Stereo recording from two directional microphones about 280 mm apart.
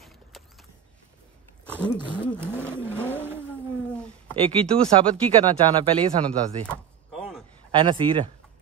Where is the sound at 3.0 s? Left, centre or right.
Centre.